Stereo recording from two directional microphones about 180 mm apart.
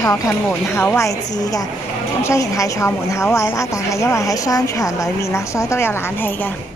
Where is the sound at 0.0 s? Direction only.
15° left (ahead or behind).